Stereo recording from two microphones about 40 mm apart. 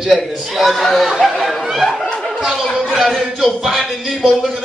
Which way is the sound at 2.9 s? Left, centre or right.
Centre.